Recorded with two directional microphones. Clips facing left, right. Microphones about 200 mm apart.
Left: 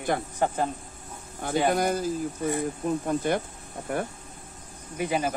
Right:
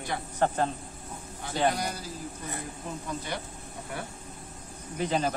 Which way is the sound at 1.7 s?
50° left (ahead or behind).